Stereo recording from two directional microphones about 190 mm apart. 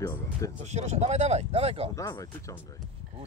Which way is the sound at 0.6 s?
35° right (ahead or behind).